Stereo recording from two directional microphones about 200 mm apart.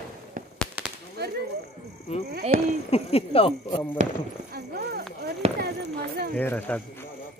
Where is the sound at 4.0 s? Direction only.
35° right (ahead or behind).